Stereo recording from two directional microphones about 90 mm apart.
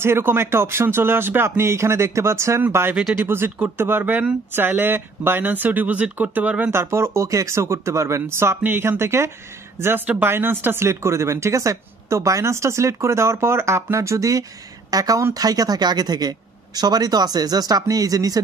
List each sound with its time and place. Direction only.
0.0 s speech: 25° right (ahead or behind)
6.7 s speech: 30° right (ahead or behind)